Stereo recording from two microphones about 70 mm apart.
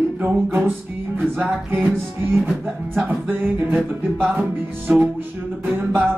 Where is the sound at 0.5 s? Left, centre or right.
Right.